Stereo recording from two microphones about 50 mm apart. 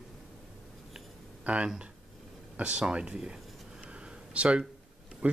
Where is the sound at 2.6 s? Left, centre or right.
Right.